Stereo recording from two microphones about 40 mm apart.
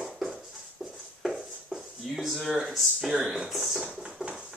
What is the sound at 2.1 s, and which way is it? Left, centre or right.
Speech, centre.